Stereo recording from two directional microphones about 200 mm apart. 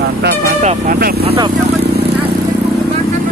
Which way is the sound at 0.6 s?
35° right (ahead or behind).